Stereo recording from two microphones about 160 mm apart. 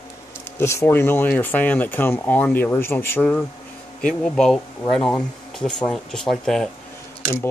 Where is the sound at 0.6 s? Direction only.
15° left (ahead or behind).